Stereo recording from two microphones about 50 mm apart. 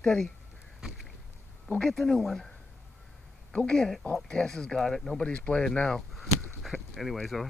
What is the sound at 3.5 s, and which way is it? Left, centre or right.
Speech, centre.